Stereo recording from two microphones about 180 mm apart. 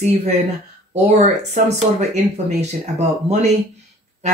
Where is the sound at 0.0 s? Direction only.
35° right (ahead or behind).